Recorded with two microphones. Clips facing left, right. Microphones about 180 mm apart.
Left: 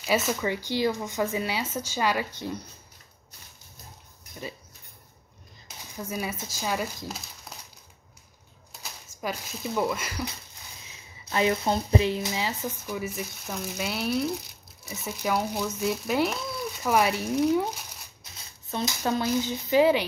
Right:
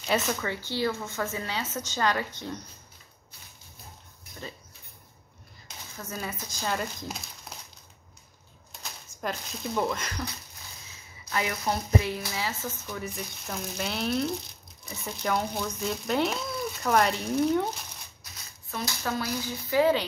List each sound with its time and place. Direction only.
0.0 s speech: 5° left (ahead or behind)
5.9 s speech: 10° left (ahead or behind)
9.2 s speech: 5° left (ahead or behind)
11.2 s speech: 25° left (ahead or behind); by 17.6 s 5° left (ahead or behind)
18.2 s speech: 25° left (ahead or behind)